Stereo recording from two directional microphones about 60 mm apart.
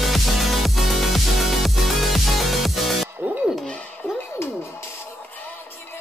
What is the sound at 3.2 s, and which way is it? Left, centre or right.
Music, right.